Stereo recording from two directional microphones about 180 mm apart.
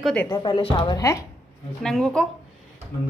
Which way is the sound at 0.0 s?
5° left (ahead or behind).